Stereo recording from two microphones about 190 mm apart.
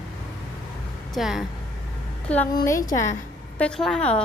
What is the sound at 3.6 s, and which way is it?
Speech, 5° left (ahead or behind).